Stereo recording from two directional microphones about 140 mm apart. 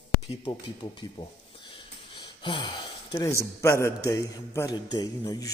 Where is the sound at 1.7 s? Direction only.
35° left (ahead or behind).